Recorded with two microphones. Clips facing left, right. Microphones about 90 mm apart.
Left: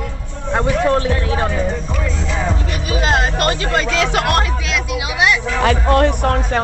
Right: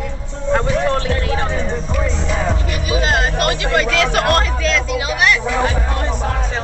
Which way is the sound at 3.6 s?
25° left (ahead or behind).